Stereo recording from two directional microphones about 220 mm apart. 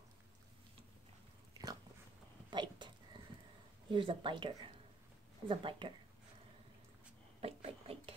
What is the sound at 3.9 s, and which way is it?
Speech, 20° right (ahead or behind).